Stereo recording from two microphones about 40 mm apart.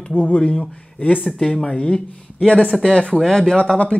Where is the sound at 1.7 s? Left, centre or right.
Left.